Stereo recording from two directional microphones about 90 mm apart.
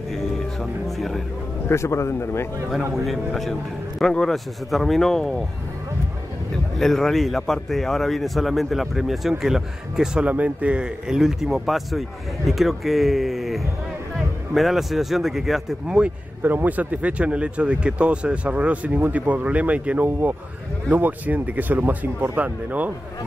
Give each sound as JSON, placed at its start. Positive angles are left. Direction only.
{"t": 0.8, "sound": "a man's voice", "side_deg": 0}
{"t": 1.7, "sound": "a man's voice", "side_deg": 30}
{"t": 4.0, "sound": "a man's voice", "side_deg": 5}
{"t": 6.8, "sound": "a man's voice", "side_deg": 5}
{"t": 16.0, "sound": "speech", "side_deg": -20}